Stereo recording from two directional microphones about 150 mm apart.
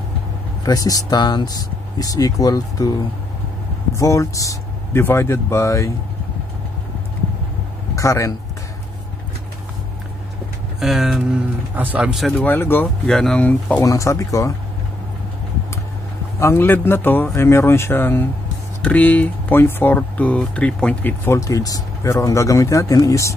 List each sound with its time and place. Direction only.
0.7 s speech: 25° left (ahead or behind)
3.9 s speech: 20° left (ahead or behind)
7.9 s speech: 20° left (ahead or behind)
10.8 s speech: centre (ahead or behind)
12.4 s speech: 15° left (ahead or behind)
13.1 s speech: 5° left (ahead or behind)
13.7 s speech: 20° left (ahead or behind)
16.3 s speech: 15° left (ahead or behind)